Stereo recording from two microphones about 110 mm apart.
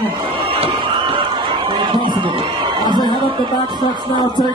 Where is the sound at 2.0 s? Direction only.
45° right (ahead or behind).